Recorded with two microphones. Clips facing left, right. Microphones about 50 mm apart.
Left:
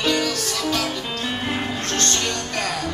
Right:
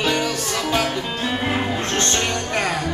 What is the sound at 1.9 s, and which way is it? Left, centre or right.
Music, right.